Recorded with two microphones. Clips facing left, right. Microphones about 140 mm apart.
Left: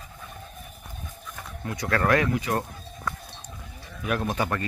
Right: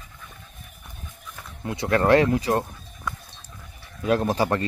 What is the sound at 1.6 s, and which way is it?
Speech, 20° right (ahead or behind).